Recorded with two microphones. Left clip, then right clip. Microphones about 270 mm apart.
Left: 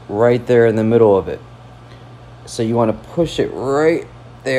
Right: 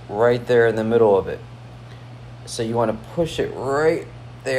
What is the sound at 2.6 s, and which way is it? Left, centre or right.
Speech, left.